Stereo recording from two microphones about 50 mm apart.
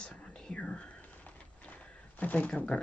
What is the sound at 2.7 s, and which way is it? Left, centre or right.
Speech, left.